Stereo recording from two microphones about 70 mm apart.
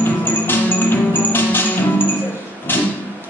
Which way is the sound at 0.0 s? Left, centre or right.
Left.